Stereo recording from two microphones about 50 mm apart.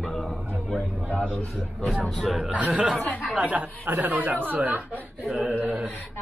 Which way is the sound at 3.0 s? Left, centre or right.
Left.